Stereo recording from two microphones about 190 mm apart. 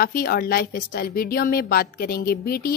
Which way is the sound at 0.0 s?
50° left (ahead or behind).